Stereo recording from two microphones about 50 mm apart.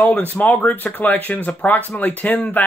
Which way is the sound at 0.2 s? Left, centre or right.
Left.